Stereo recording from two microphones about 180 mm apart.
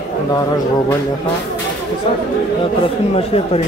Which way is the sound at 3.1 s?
35° left (ahead or behind).